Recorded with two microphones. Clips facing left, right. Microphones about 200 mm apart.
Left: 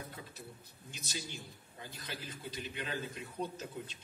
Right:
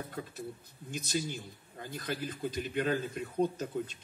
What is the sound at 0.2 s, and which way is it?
A man's voice, 60° right (ahead or behind).